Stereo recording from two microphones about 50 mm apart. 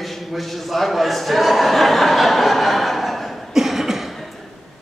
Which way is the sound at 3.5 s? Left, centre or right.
Centre.